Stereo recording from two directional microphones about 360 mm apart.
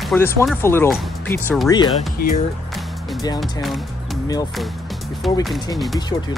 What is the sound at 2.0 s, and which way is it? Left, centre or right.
Speech, left.